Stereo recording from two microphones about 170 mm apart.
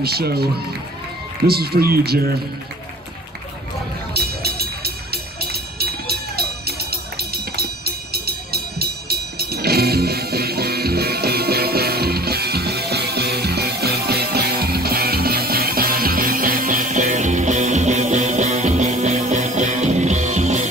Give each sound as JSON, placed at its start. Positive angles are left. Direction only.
{"t": 0.0, "sound": "speech", "side_deg": -65}
{"t": 1.5, "sound": "speech", "side_deg": -65}
{"t": 4.1, "sound": "music", "side_deg": -65}